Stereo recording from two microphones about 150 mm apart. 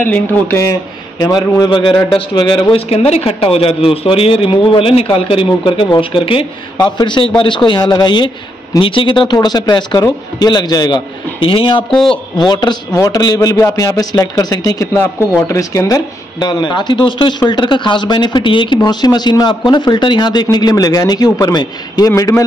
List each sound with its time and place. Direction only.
0.0 s speech: 15° left (ahead or behind)
1.2 s speech: 25° left (ahead or behind)
11.9 s a man's voice: 5° left (ahead or behind)
12.4 s speech: 30° left (ahead or behind)